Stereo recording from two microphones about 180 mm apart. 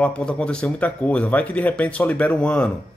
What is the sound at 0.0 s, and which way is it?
Speech, 5° left (ahead or behind).